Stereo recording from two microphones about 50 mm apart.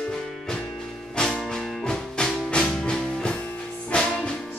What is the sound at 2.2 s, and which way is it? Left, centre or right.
Music, centre.